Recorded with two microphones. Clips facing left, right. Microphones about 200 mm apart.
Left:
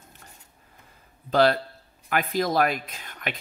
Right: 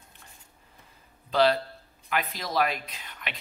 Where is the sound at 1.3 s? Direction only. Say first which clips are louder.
Left 2 dB; 50° left (ahead or behind).